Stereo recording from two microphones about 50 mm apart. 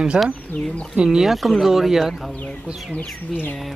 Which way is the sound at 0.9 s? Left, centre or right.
Centre.